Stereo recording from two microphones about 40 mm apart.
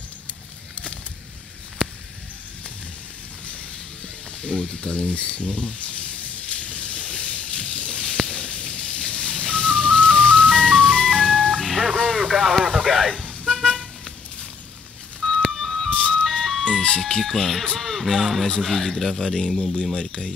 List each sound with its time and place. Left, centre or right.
4.4 s speech: left
6.5 s a sound: left
8.3 s music: left
10.8 s ice cream truck: left
11.6 s telephone dialing: centre
11.9 s radio: centre
13.1 s toot: centre
15.5 s music: centre
15.9 s music: left
16.6 s ice cream truck: left
17.0 s speech: centre
20.0 s speech: left